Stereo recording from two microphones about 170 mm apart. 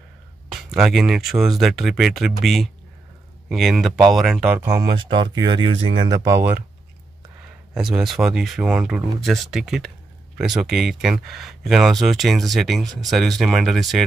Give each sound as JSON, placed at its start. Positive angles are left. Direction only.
{"t": 0.5, "sound": "speech", "side_deg": 0}
{"t": 4.6, "sound": "speech", "side_deg": -15}
{"t": 4.9, "sound": "speech", "side_deg": -30}
{"t": 7.7, "sound": "speech", "side_deg": -5}